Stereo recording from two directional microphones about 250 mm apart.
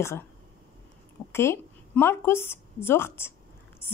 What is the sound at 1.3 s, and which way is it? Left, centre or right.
A woman's voice, centre.